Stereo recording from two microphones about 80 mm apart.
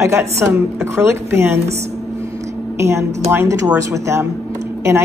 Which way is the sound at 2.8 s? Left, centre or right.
Right.